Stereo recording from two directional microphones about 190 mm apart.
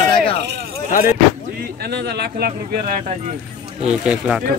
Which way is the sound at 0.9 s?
45° left (ahead or behind).